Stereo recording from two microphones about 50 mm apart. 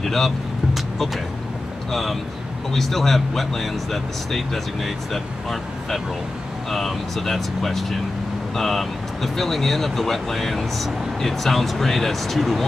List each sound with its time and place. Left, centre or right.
0.0 s speech: centre
0.7 s music: centre
1.9 s speech: centre